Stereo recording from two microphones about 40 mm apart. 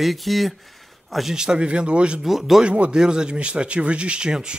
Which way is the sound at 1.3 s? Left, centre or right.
Centre.